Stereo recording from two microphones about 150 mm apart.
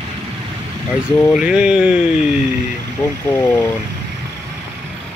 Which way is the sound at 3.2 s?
15° left (ahead or behind).